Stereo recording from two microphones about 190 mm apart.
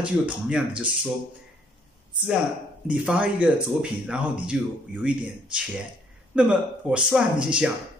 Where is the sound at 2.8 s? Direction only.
5° right (ahead or behind).